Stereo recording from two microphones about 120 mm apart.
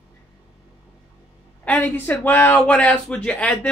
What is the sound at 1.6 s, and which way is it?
A man's voice, 15° left (ahead or behind).